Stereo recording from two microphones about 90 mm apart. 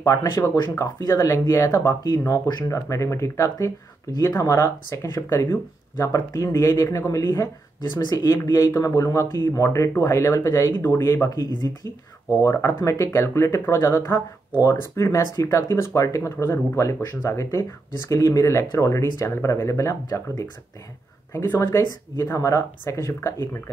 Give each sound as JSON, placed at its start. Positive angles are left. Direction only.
{"t": 0.0, "sound": "speech", "side_deg": 40}
{"t": 2.7, "sound": "speech", "side_deg": 35}
{"t": 11.2, "sound": "speech", "side_deg": 45}
{"t": 12.4, "sound": "speech", "side_deg": 35}
{"t": 21.3, "sound": "speech", "side_deg": 30}